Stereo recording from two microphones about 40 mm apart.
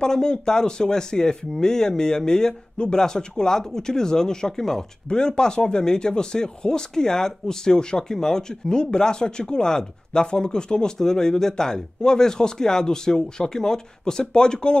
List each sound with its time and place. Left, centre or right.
0.0 s speech: centre